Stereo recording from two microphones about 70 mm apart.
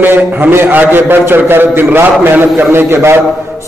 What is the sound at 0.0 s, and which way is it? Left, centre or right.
A man's voice, right.